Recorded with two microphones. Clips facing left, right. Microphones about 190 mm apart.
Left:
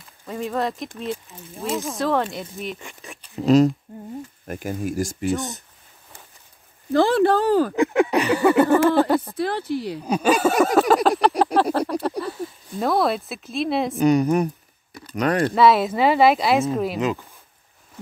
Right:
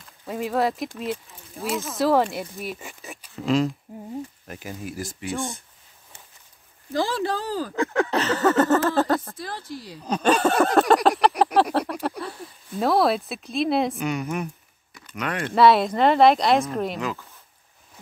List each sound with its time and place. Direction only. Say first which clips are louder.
0.3 s speech: right 1 dB; 5° right (ahead or behind)
3.3 s a woman's voice: left 7 dB; 40° left (ahead or behind)
4.5 s speech: left 8 dB; 50° left (ahead or behind)
6.9 s speech: left 8 dB; 60° left (ahead or behind)
7.7 s speech: left 4 dB; 15° left (ahead or behind)
9.4 s speech: left 10 dB; 65° left (ahead or behind)
10.0 s speech: left 1 dB; 10° left (ahead or behind)
11.1 s a sound: left 1 dB; centre (ahead or behind)
12.2 s speech: left 6 dB; centre (ahead or behind)
13.9 s a woman's voice: left 10 dB; 35° left (ahead or behind)
15.5 s speech: right 3 dB; centre (ahead or behind)
17.0 s speech: left 6 dB; 20° left (ahead or behind)